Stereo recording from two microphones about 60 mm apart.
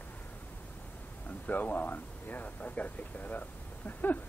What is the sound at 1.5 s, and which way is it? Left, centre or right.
Speech, left.